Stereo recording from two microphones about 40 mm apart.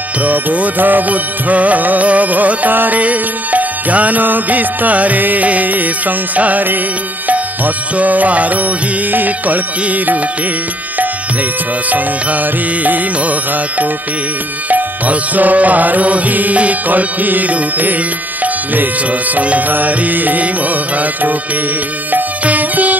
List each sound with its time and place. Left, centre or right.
0.2 s music: right
3.0 s music: right
11.9 s music: right
18.4 s speech: right
19.7 s music: right
22.4 s music: right